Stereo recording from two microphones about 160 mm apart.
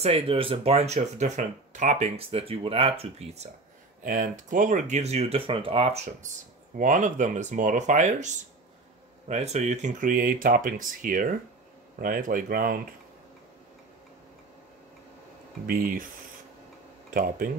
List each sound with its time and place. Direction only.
0.0 s speech: 35° right (ahead or behind)
4.0 s speech: 55° right (ahead or behind)
6.8 s speech: 50° right (ahead or behind)
15.6 s speech: 65° right (ahead or behind)
17.1 s speech: 60° right (ahead or behind)